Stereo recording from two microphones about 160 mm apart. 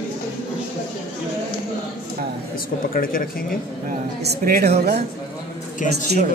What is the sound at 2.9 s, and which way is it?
Speech, 65° left (ahead or behind).